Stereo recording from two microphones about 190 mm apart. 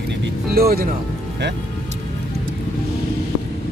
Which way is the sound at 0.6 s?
55° right (ahead or behind).